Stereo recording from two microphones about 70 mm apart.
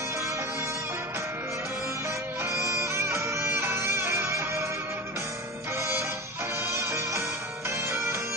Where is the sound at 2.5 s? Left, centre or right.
Right.